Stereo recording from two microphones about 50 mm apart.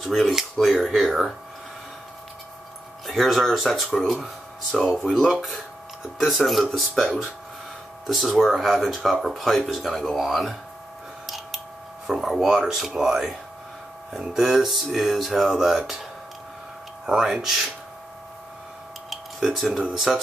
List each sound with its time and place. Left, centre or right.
0.0 s speech: centre
3.1 s speech: centre
4.8 s speech: centre
5.1 s speech: centre
8.1 s speech: centre
11.2 s a sound: centre
12.1 s speech: centre
17.0 s speech: centre
19.5 s speech: centre